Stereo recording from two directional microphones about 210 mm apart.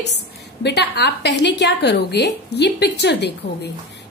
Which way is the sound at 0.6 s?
50° left (ahead or behind).